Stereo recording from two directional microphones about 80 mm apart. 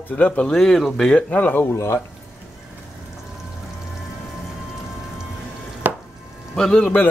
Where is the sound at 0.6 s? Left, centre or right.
Centre.